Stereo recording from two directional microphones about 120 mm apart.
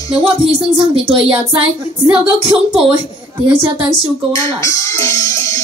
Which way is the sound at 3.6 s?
50° right (ahead or behind).